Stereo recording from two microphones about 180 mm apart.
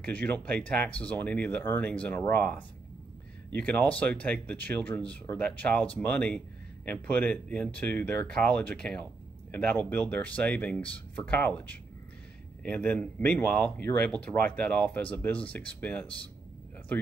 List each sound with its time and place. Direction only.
0.0 s speech: 10° left (ahead or behind)